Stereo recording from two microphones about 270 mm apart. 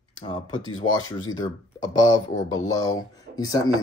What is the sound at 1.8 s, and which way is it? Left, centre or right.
Speech, centre.